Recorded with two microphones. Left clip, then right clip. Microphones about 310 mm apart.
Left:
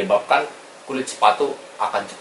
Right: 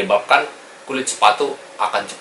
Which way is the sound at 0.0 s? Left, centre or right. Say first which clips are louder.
Right 3 dB; centre.